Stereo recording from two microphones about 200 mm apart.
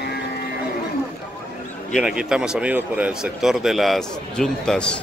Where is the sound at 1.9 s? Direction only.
Centre (ahead or behind).